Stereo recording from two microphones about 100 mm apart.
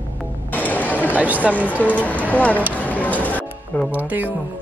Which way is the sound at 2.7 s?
15° left (ahead or behind).